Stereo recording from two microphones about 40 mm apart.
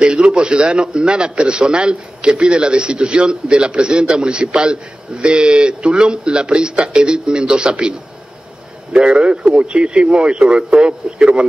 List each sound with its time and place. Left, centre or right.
0.0 s a man's voice: right
8.9 s a man's voice: right